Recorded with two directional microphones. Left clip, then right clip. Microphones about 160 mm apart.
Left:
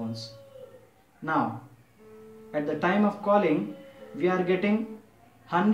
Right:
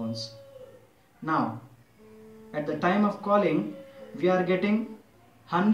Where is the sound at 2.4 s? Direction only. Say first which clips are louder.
Even; 15° left (ahead or behind).